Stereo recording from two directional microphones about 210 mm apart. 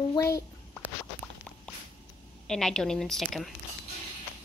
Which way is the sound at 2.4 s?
Centre (ahead or behind).